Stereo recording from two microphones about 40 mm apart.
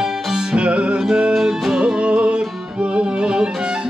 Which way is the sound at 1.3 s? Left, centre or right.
Centre.